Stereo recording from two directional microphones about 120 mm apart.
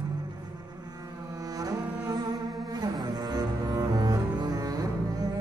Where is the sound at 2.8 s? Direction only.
35° right (ahead or behind).